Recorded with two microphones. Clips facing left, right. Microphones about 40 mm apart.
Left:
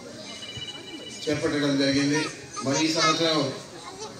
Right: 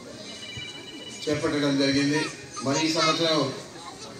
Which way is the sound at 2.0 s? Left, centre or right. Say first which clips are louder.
Even; right.